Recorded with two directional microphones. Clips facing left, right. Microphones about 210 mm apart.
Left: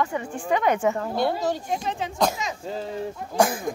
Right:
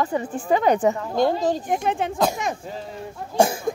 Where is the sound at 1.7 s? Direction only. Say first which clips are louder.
Right 5 dB; 55° right (ahead or behind).